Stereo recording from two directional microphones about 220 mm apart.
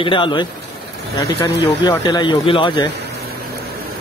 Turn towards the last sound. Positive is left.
turn(degrees=20)  # may be behind; listen again after turning